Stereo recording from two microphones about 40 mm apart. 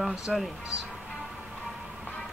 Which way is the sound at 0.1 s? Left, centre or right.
Centre.